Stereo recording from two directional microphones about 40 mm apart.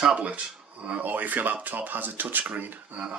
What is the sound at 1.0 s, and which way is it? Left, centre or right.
Speech, right.